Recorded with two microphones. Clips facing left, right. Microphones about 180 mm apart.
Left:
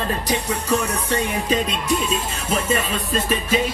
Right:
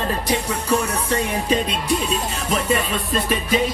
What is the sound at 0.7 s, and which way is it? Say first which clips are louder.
Music: right 1 dB; 35° right (ahead or behind).